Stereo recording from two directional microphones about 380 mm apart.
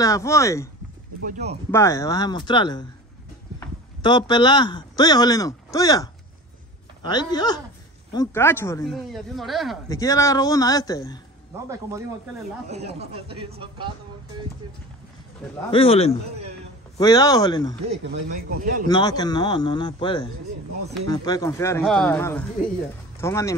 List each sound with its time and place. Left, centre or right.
0.0 s speech: centre
1.2 s speech: centre
1.7 s speech: centre
7.1 s speech: centre
12.6 s speech: centre
15.7 s speech: centre
18.9 s speech: centre